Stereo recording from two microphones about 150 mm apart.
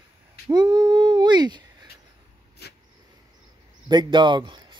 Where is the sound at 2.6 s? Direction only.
90° left.